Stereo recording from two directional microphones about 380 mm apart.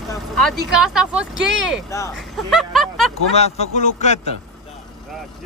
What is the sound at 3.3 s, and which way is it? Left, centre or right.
Speech, centre.